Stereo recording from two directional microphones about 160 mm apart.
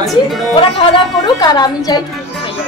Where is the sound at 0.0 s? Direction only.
Centre (ahead or behind).